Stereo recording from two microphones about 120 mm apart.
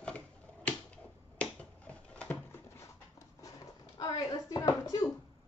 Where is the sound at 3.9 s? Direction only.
35° left (ahead or behind).